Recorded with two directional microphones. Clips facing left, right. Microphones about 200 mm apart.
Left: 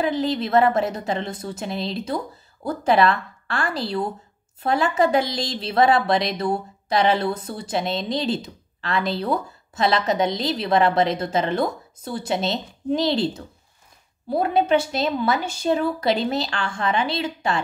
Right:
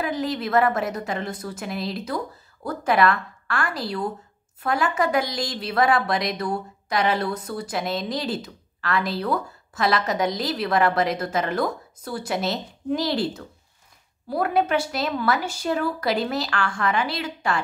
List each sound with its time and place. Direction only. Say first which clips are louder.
0.0 s speech: left 3 dB; 25° left (ahead or behind)